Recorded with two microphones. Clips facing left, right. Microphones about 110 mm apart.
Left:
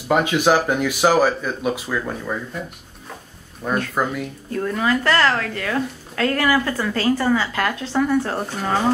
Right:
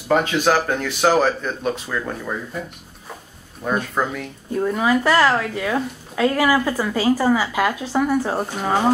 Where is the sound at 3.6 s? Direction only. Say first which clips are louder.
Even; 5° right (ahead or behind).